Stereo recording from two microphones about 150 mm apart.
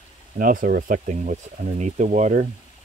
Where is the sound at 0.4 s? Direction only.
65° right (ahead or behind).